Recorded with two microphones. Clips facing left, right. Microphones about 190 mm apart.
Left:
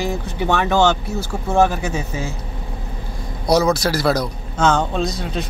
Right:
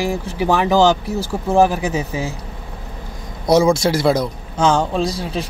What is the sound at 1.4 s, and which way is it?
Speech, 15° right (ahead or behind).